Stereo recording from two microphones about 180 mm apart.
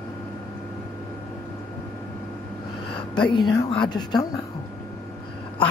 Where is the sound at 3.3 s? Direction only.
20° left (ahead or behind).